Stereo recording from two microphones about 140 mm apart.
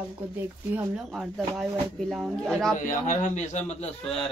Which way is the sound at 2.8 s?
70° left (ahead or behind).